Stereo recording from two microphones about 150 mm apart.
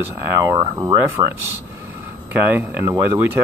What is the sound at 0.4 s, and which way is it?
Speech, 20° right (ahead or behind).